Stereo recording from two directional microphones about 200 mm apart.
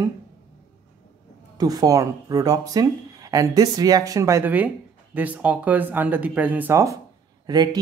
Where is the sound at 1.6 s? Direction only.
20° right (ahead or behind).